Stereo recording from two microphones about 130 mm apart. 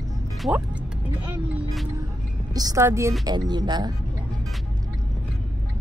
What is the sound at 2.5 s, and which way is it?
Speech, 25° right (ahead or behind).